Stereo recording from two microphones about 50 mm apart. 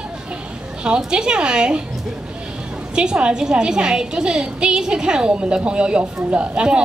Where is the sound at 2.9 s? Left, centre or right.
Centre.